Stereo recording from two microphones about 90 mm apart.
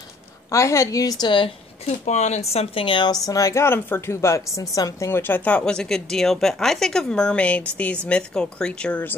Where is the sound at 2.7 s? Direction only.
70° left (ahead or behind).